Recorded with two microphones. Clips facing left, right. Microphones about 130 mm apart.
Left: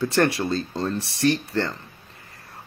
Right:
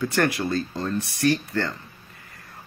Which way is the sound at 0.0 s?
25° left (ahead or behind).